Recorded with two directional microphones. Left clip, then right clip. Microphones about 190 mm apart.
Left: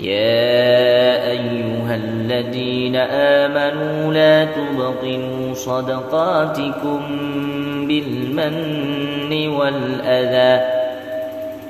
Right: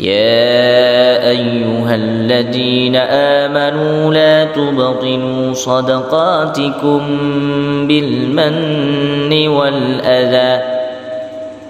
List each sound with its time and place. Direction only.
0.1 s mantra: 40° right (ahead or behind)
9.3 s mantra: 40° right (ahead or behind)